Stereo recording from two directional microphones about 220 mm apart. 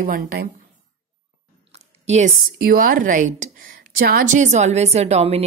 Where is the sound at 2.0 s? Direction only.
30° right (ahead or behind).